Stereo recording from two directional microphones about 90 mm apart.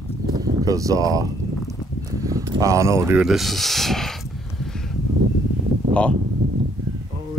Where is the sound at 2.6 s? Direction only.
35° right (ahead or behind).